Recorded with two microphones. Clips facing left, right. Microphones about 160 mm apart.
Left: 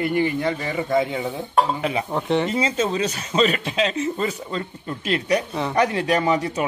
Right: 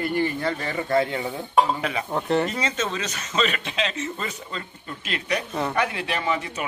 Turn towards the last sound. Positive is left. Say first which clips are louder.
# left 6 dB
turn(degrees=35)  # may be behind; listen again after turning